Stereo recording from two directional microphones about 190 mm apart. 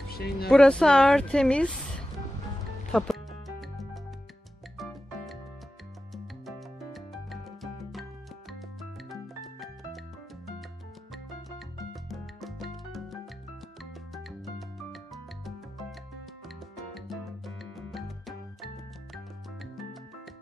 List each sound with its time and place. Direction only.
0.1 s speech: 55° left (ahead or behind)
0.5 s speech: 5° left (ahead or behind)
2.9 s music: centre (ahead or behind)
11.5 s music: centre (ahead or behind)
16.4 s salsa music: centre (ahead or behind)
17.7 s music: centre (ahead or behind)